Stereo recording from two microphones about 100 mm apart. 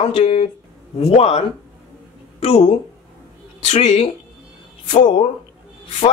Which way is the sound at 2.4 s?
90° left.